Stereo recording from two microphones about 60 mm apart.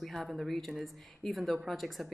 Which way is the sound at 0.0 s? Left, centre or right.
Centre.